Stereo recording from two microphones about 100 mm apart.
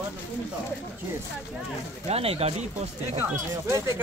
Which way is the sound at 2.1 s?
85° right.